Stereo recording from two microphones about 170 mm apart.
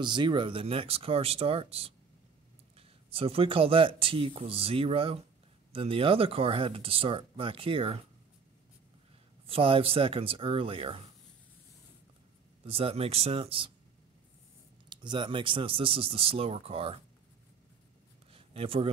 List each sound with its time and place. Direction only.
0.0 s speech: 25° right (ahead or behind)
9.5 s speech: 30° right (ahead or behind)
12.6 s speech: 35° right (ahead or behind)
14.9 s speech: 25° right (ahead or behind)
18.3 s a sound: 35° right (ahead or behind)